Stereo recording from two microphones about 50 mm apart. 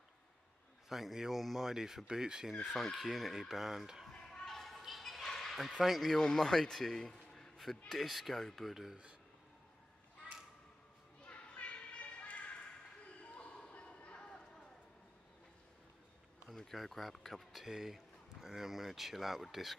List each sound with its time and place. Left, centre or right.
0.8 s speech: centre
2.6 s speech: centre
4.1 s a sound: centre
5.8 s speech: centre
6.1 s speech: centre
11.2 s basketball bounce: left
13.2 s a sound: left
16.4 s speech: centre